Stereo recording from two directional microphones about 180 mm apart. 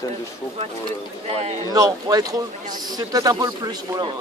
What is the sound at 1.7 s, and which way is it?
A man's voice, 20° right (ahead or behind).